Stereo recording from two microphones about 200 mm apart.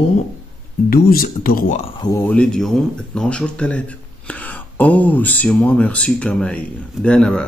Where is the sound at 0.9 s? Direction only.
45° left (ahead or behind).